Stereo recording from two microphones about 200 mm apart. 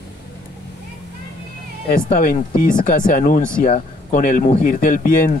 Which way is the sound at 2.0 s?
40° left (ahead or behind).